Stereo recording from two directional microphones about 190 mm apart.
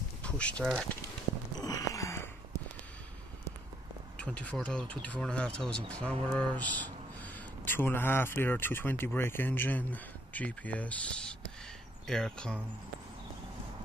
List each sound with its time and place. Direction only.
0.2 s speech: 5° left (ahead or behind)
1.6 s a sound: 20° left (ahead or behind)
4.2 s speech: 5° left (ahead or behind)
12.1 s speech: 5° left (ahead or behind)